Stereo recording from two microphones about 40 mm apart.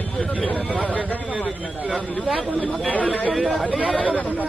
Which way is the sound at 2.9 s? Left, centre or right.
Left.